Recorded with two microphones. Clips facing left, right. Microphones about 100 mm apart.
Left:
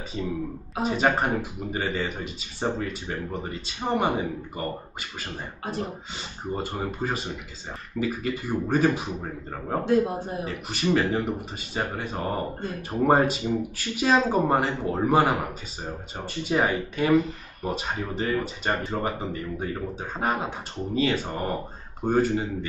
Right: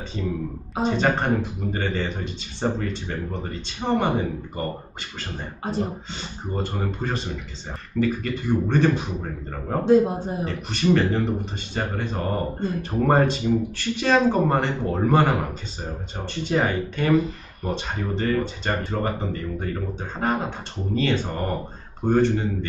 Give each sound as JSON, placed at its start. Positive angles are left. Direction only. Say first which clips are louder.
{"t": 0.2, "sound": "speech", "louder": "right 1 dB", "side_deg": 10}
{"t": 6.5, "sound": "speech", "louder": "right 2 dB", "side_deg": 5}
{"t": 9.8, "sound": "a man's voice", "louder": "right 6 dB", "side_deg": -25}
{"t": 10.4, "sound": "speech", "louder": "right 6 dB", "side_deg": 10}